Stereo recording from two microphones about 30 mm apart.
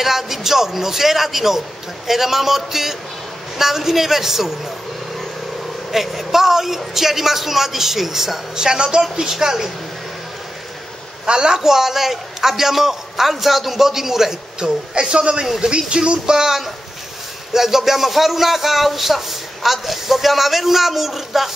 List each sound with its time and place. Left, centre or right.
0.0 s a man's voice: centre
5.9 s a man's voice: centre
8.5 s speech: right
9.3 s a man's voice: centre
11.2 s a man's voice: right
14.6 s a man's voice: right
17.5 s a man's voice: centre